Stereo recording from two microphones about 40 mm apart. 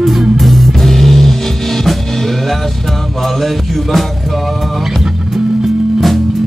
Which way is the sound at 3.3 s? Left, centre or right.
Centre.